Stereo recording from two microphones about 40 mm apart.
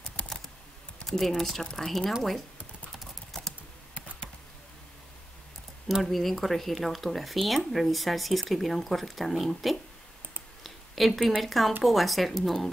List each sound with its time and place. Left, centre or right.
0.2 s typing: left
1.0 s speech: centre
6.0 s speech: centre